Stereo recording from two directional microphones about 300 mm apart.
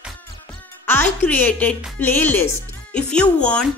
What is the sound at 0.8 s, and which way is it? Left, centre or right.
Speech, centre.